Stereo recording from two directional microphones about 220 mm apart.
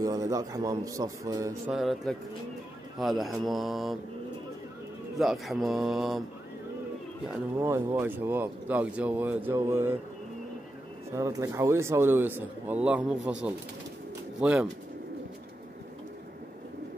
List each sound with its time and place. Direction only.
0.0 s speech: 15° right (ahead or behind)
1.7 s mantra: centre (ahead or behind)
5.2 s mantra: centre (ahead or behind)
7.3 s speech: 15° right (ahead or behind)
11.1 s speech: 15° right (ahead or behind)
13.3 s mantra: 5° right (ahead or behind)